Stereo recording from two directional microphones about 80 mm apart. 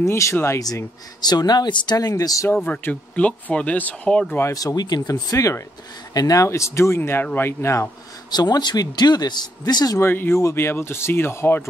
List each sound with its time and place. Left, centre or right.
0.0 s speech: left
1.2 s speech: left
2.0 s speech: left
2.5 s speech: centre
4.5 s speech: left
4.7 s speech: left
8.3 s speech: left
9.9 s speech: left